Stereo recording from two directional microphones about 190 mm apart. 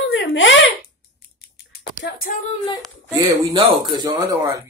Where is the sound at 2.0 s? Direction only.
50° left (ahead or behind).